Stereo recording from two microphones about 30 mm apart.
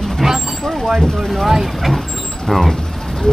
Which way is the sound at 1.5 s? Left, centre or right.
Centre.